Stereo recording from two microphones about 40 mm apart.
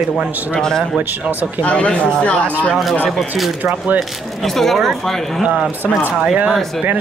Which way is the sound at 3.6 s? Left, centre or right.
Right.